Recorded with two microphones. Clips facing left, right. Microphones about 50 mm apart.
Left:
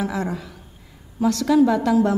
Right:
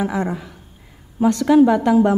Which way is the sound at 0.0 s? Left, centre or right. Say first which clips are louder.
Right 3 dB; right.